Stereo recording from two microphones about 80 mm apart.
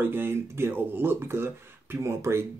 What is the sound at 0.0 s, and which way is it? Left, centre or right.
Speech, right.